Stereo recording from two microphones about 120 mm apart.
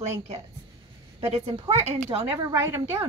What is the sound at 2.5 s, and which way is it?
Speech, 25° right (ahead or behind).